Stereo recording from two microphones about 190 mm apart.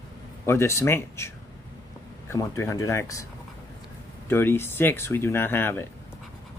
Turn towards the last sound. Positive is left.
turn(degrees=10)  # may be behind; listen again after turning